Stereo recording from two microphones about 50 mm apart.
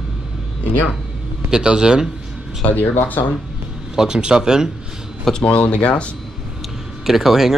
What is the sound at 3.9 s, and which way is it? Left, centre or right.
Speech, centre.